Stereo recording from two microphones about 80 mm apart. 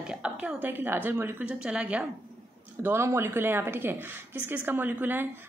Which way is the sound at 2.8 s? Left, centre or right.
Right.